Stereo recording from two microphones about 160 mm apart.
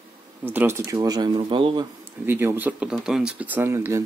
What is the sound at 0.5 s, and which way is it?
Speech, 15° right (ahead or behind).